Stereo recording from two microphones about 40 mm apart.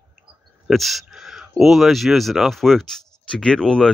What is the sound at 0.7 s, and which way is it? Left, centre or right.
Speech, centre.